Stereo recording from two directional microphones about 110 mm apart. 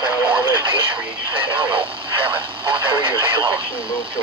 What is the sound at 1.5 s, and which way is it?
Speech, 50° right (ahead or behind).